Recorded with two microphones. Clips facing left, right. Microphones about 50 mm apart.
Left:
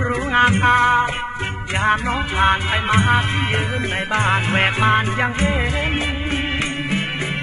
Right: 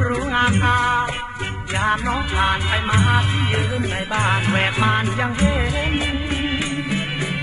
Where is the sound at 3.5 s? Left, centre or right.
Left.